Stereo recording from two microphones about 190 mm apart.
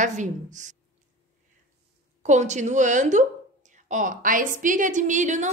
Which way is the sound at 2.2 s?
35° right (ahead or behind).